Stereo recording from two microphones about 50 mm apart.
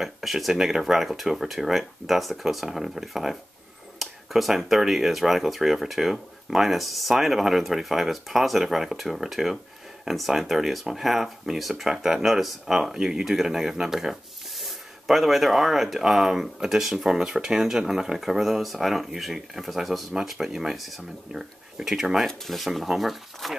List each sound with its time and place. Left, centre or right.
0.0 s speech: centre
22.3 s speech: centre